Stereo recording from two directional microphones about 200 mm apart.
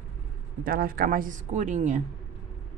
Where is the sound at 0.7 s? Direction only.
45° right (ahead or behind).